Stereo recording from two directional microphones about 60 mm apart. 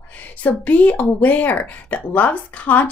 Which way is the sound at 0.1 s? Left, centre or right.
Left.